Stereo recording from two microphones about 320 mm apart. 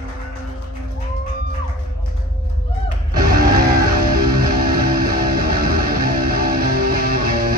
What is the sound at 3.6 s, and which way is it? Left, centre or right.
Music, right.